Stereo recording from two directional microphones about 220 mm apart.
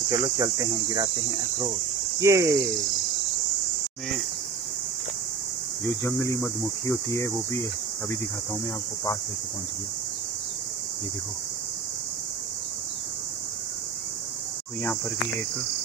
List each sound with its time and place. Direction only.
0.1 s speech: 15° right (ahead or behind)
0.9 s speech: 30° right (ahead or behind)
2.1 s speech: 15° right (ahead or behind)
6.0 s speech: 15° left (ahead or behind)